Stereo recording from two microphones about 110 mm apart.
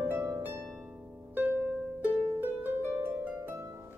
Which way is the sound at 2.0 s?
15° right (ahead or behind).